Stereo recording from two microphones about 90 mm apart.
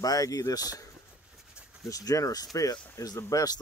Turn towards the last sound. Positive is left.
turn(degrees=45)  # may be behind; listen again after turning